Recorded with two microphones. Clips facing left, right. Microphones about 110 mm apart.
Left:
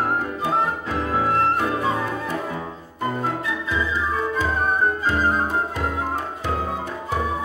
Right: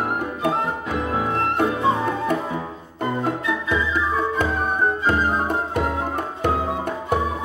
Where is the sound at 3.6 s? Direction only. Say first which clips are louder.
Right 1 dB; 60° right (ahead or behind).